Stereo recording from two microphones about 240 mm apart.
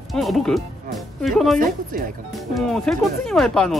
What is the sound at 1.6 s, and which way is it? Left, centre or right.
Speech, right.